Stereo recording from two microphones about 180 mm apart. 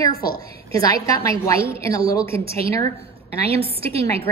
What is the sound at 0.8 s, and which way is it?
A woman's voice, 20° left (ahead or behind).